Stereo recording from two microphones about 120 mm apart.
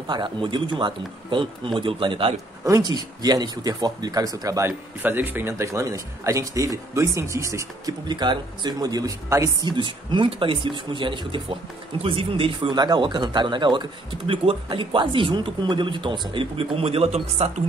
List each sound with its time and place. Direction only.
0.0 s speech: 40° right (ahead or behind)
2.6 s speech: 30° right (ahead or behind)
8.1 s speech: 40° right (ahead or behind); by 17.5 s 55° right (ahead or behind)